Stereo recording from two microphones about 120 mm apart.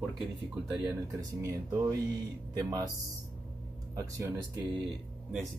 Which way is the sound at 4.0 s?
25° right (ahead or behind).